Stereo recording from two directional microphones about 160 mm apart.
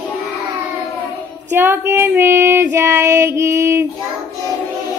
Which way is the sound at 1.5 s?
15° right (ahead or behind).